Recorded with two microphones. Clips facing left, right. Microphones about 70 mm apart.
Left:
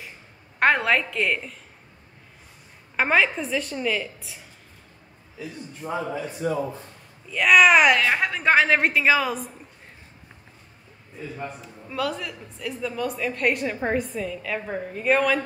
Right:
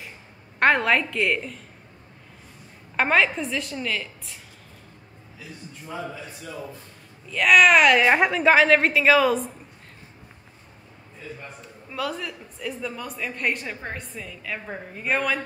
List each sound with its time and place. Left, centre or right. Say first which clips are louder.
0.6 s a woman's voice: right 1 dB; centre
3.0 s a woman's voice: even; centre
6.4 s speech: left 14 dB; left
7.2 s a woman's voice: even; centre
8.0 s a woman's voice: right 4 dB; centre
8.3 s a woman's voice: right 2 dB; centre
11.9 s a woman's voice: left 2 dB; centre